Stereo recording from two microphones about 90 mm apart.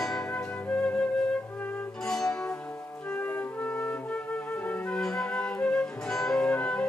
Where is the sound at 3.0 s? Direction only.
20° left (ahead or behind).